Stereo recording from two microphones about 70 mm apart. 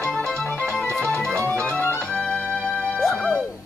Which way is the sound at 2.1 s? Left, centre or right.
Centre.